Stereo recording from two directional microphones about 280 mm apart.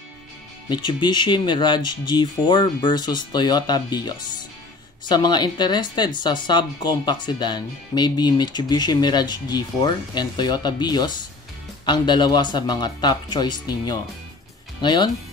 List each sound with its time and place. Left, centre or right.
0.7 s speech: centre